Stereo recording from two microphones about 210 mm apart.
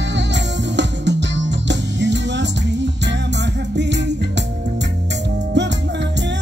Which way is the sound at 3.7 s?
55° right (ahead or behind).